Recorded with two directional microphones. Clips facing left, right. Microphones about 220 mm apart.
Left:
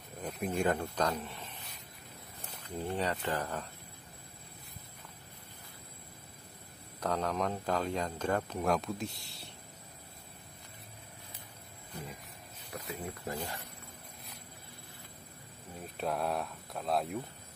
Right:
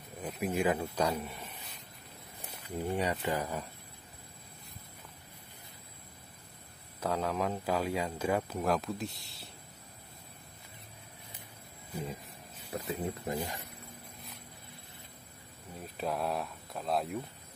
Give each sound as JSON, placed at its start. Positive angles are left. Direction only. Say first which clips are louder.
{"t": 0.2, "sound": "speech", "louder": "right 1 dB", "side_deg": -5}
{"t": 2.6, "sound": "speech", "louder": "right 2 dB", "side_deg": -10}
{"t": 7.0, "sound": "speech", "louder": "right 1 dB", "side_deg": -5}
{"t": 12.7, "sound": "speech", "louder": "right 5 dB", "side_deg": -25}
{"t": 15.8, "sound": "speech", "louder": "even", "side_deg": 0}